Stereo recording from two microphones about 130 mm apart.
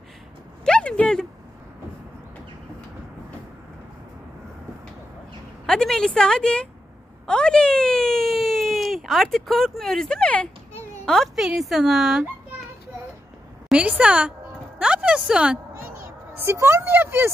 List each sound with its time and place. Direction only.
0.7 s a sound: 10° left (ahead or behind)
5.7 s a woman's voice: 5° left (ahead or behind)
13.7 s speech: 10° right (ahead or behind)
16.3 s speech: 20° right (ahead or behind)